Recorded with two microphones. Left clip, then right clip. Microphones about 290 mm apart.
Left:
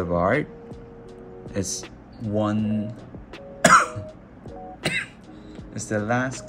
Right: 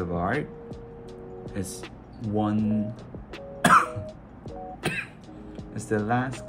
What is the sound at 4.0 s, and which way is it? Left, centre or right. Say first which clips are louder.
Music: even; centre.